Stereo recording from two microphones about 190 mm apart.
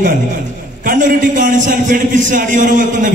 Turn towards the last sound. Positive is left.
turn(degrees=-45)  # may be behind; listen again after turning